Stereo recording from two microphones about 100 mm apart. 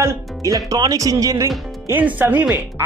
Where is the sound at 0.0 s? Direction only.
35° right (ahead or behind).